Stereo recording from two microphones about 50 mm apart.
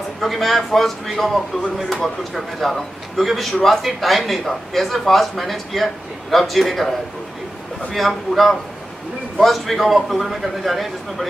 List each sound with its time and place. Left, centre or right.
0.2 s speech: centre